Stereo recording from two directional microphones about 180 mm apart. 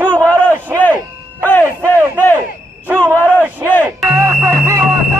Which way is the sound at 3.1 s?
10° left (ahead or behind).